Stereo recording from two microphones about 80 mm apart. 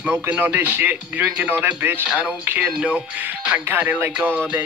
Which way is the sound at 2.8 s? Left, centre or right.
Centre.